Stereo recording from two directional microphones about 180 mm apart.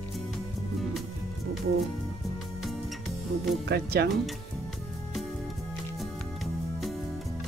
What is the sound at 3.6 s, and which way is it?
Speech, 65° right (ahead or behind).